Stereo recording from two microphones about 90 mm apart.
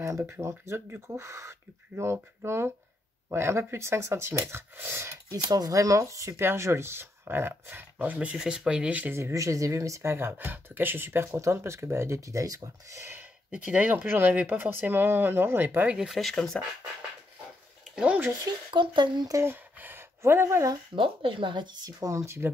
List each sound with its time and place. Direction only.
0.0 s speech: 30° right (ahead or behind)
5.3 s speech: 45° right (ahead or behind); by 8.4 s 20° right (ahead or behind)
8.4 s speech: 5° right (ahead or behind)
9.1 s speech: 35° right (ahead or behind)
13.2 s speech: 15° right (ahead or behind)
16.1 s speech: centre (ahead or behind)
17.9 s speech: 15° right (ahead or behind)
18.4 s speech: 60° right (ahead or behind)
19.4 s a sound: 25° right (ahead or behind)
20.9 s speech: 70° right (ahead or behind)
22.0 s speech: 35° right (ahead or behind)